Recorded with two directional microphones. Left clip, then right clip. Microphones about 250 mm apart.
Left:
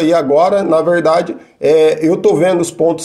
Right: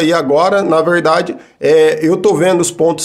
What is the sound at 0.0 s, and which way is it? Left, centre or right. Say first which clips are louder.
A man's voice: left 1 dB; centre.